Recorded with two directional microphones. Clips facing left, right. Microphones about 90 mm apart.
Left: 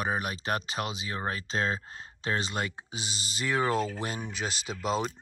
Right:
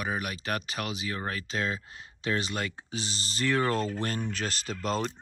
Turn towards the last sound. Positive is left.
turn(degrees=10)  # may be behind; listen again after turning